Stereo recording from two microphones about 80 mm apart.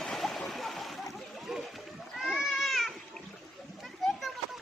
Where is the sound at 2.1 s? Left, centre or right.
Centre.